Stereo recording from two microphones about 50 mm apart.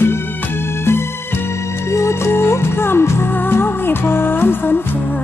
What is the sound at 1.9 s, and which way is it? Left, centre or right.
Music, left.